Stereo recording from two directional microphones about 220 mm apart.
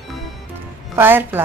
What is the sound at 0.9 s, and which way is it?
Speech, 10° right (ahead or behind).